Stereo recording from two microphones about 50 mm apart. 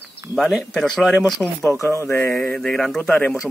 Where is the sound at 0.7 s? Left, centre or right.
Centre.